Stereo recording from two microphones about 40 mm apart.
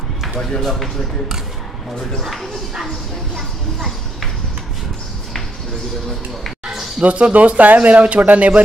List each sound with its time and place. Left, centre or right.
0.4 s speech: centre
2.2 s a child's voice: centre
7.0 s speech: right